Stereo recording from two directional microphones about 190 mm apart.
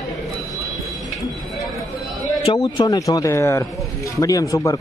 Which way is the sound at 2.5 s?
20° left (ahead or behind).